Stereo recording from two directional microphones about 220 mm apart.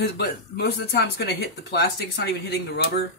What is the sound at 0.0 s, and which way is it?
Speech, 50° left (ahead or behind).